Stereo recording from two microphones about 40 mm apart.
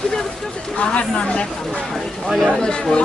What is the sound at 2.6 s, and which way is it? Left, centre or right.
Speech, centre.